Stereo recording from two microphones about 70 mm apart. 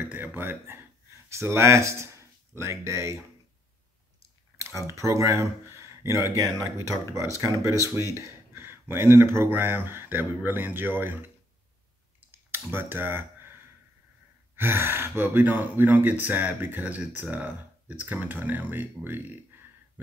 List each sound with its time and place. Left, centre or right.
0.0 s speech: right
4.6 s speech: right
12.3 s clicking: right
14.5 s speech: right